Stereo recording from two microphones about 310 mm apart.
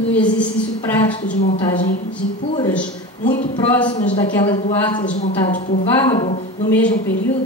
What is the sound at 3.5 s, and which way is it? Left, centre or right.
A woman's voice, centre.